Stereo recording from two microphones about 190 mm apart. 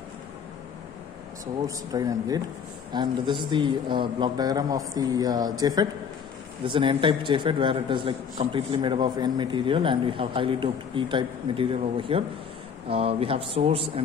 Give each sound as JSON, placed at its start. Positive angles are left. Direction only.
{"t": 1.9, "sound": "a man's voice", "side_deg": -20}